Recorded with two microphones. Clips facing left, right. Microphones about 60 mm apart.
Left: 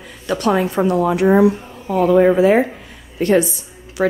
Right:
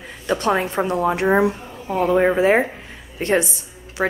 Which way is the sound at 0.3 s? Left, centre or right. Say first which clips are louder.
Left 2 dB; right.